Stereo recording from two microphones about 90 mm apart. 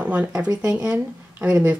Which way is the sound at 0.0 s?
15° right (ahead or behind).